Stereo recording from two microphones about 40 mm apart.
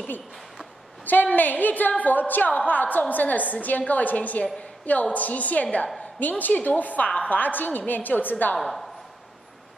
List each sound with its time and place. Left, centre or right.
1.0 s a woman's voice: left
6.1 s a woman's voice: left
8.5 s speech: centre